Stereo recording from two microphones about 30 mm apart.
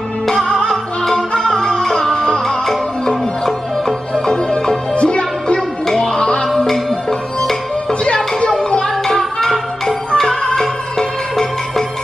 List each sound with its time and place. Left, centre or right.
0.5 s music: centre
4.3 s music: left
6.4 s music: centre
8.0 s music: left
8.5 s music: left
9.0 s music: centre